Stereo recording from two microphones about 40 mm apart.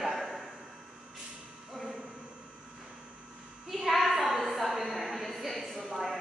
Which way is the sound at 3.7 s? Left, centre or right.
Centre.